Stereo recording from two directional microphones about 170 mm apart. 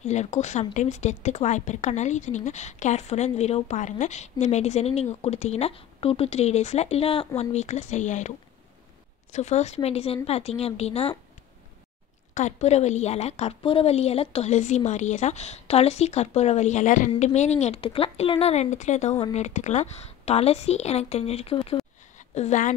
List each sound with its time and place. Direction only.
0.0 s a woman's voice: 40° left (ahead or behind)
9.3 s a woman's voice: 40° left (ahead or behind)
12.4 s a woman's voice: 40° left (ahead or behind)